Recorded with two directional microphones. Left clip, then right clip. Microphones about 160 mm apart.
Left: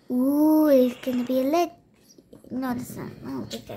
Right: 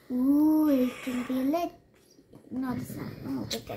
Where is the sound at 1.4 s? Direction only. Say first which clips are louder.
Left 7 dB; 90° left.